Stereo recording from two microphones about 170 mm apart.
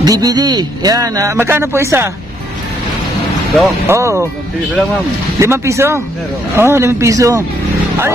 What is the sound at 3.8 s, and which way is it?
Speech, 15° right (ahead or behind).